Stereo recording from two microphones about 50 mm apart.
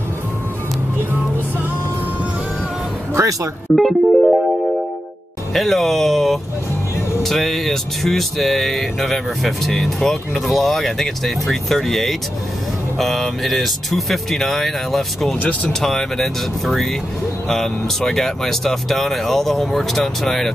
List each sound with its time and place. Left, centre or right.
3.7 s music: centre
5.5 s speech: centre